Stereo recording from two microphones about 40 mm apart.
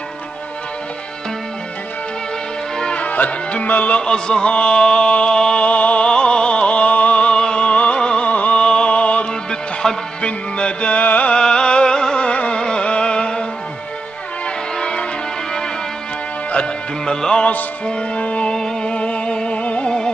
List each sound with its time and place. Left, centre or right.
2.8 s music: left
3.1 s music: left
3.9 s mantra: left
5.6 s a sound: left
6.0 s music: left
8.3 s music: left
9.3 s music: left
11.0 s music: left
11.3 s music: left
14.8 s music: left
16.5 s music: left
18.5 s music: centre